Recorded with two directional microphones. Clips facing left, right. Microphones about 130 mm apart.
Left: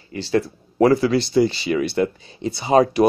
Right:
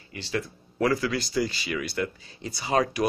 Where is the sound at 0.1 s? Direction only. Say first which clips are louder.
Left 10 dB; 35° left (ahead or behind).